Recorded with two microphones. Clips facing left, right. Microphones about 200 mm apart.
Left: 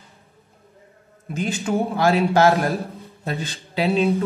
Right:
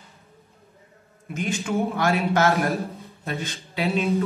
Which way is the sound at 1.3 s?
35° left (ahead or behind).